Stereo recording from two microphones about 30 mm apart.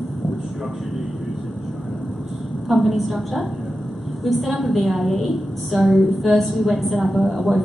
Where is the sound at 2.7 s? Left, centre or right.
Centre.